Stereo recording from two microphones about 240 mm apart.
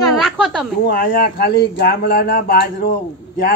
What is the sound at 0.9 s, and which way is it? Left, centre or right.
Speech, left.